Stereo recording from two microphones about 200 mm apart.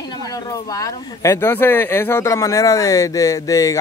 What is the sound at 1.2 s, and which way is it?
Speech, 10° left (ahead or behind).